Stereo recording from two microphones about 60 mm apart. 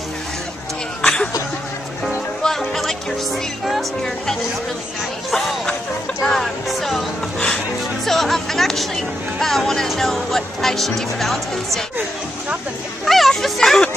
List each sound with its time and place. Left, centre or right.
1.0 s a sound: centre
2.4 s music: centre
3.6 s speech: centre
5.3 s music: centre
7.4 s speech: centre
13.0 s speech: centre